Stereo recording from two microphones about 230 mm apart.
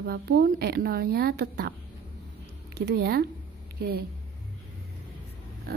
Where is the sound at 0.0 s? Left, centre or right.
Right.